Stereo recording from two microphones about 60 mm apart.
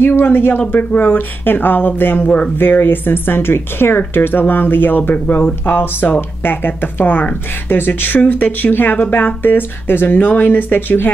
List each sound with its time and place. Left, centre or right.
0.0 s speech: left